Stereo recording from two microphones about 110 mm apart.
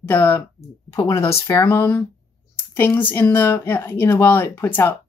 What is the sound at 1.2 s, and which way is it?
Speech, 25° left (ahead or behind).